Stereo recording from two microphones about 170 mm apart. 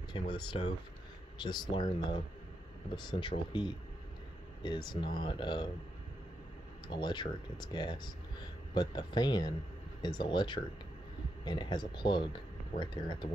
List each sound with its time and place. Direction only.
0.1 s speech: 30° left (ahead or behind)
6.9 s speech: 25° left (ahead or behind)